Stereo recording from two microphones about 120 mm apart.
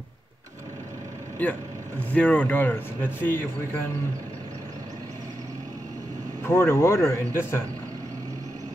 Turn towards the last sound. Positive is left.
turn(degrees=20)  # may be behind; listen again after turning